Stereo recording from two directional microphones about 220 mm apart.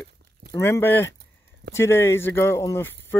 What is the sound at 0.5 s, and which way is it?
Speech, 10° left (ahead or behind).